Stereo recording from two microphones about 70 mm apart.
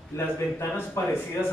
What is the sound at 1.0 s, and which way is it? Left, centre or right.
Speech, left.